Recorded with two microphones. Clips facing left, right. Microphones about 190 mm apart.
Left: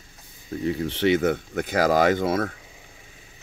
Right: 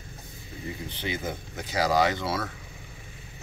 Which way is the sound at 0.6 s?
75° left (ahead or behind).